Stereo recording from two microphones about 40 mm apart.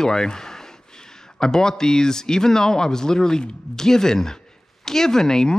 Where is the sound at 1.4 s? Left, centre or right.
Centre.